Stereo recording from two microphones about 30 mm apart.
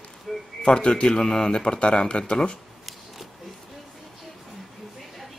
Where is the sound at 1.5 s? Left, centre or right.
Left.